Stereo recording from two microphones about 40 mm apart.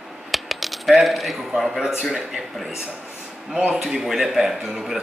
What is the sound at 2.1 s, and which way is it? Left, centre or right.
Speech, centre.